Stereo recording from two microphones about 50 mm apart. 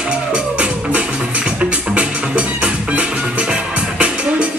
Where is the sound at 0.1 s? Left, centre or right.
Right.